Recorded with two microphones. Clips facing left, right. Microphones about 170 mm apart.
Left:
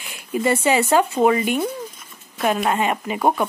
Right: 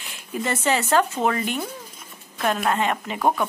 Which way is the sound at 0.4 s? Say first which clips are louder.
Left 5 dB; 10° left (ahead or behind).